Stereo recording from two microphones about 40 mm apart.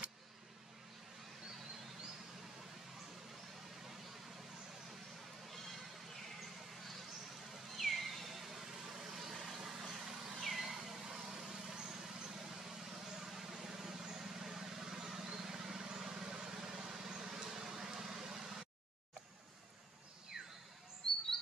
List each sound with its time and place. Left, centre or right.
7.5 s vehicle: centre
20.4 s a sound: right
21.0 s bird: centre